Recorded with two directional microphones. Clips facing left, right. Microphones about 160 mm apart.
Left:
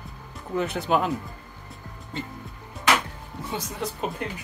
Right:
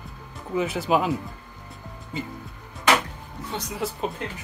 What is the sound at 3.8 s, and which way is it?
Speech, centre (ahead or behind).